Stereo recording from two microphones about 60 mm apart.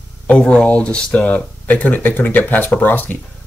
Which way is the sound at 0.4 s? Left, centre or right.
Centre.